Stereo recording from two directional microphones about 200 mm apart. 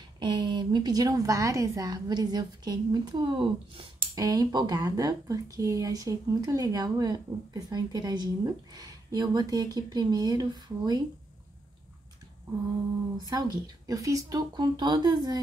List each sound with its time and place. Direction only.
0.2 s a woman's voice: 25° right (ahead or behind)
13.2 s a woman's voice: 20° right (ahead or behind)